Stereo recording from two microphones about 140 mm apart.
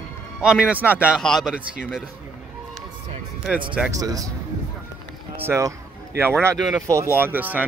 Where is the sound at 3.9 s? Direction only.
25° right (ahead or behind).